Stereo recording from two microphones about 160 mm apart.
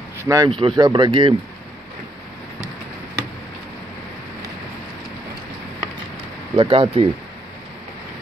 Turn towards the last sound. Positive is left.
turn(degrees=-35)  # may be behind; listen again after turning